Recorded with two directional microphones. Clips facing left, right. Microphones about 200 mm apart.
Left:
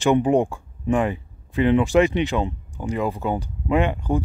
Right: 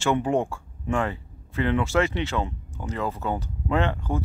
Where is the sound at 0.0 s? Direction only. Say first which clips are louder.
Left 5 dB; 15° left (ahead or behind).